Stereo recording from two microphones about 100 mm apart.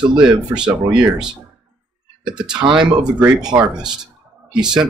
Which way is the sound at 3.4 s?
45° right (ahead or behind).